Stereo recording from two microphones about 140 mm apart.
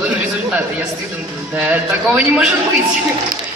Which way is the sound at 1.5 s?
10° right (ahead or behind).